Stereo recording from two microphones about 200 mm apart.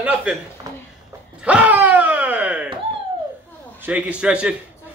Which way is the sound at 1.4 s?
5° right (ahead or behind).